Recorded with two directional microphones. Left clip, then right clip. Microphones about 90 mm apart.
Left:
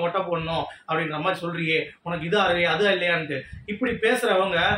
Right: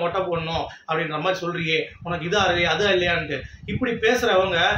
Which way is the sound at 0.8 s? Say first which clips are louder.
Right 2 dB; 30° right (ahead or behind).